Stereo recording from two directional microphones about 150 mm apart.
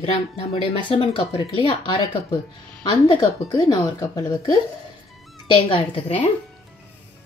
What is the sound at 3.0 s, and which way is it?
A woman's voice, 25° left (ahead or behind).